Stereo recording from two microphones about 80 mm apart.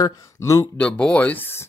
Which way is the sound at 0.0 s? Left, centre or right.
Left.